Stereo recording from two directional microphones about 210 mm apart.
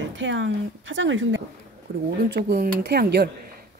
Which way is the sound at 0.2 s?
60° right (ahead or behind).